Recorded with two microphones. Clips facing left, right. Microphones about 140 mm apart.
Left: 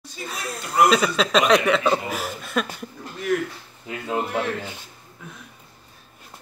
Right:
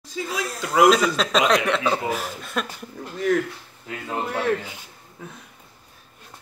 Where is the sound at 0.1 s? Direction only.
90° right.